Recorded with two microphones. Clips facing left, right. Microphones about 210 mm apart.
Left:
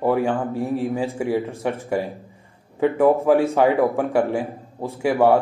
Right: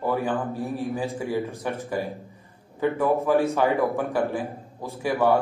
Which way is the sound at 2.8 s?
30° left (ahead or behind).